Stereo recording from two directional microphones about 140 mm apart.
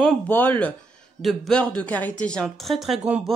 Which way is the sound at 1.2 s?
Centre (ahead or behind).